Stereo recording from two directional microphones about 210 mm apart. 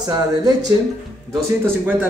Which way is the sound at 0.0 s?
15° right (ahead or behind).